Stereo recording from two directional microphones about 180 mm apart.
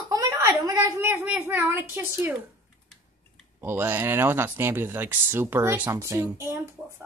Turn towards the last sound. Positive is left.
turn(degrees=-15)  # may be behind; listen again after turning